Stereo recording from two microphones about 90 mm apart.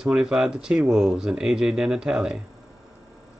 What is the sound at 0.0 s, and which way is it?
Speech, 5° right (ahead or behind).